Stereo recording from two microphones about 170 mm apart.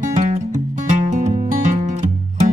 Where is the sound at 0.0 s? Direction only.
50° right (ahead or behind).